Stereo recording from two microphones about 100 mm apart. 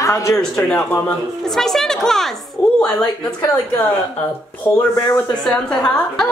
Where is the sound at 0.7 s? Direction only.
25° left (ahead or behind).